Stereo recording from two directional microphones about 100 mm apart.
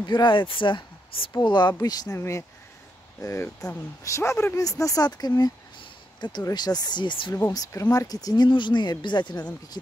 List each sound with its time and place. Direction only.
0.0 s speech: 50° left (ahead or behind)
5.8 s a sound: 45° left (ahead or behind)
6.5 s speech: 45° left (ahead or behind)
7.9 s speech: 40° left (ahead or behind)
8.5 s speech: 50° left (ahead or behind)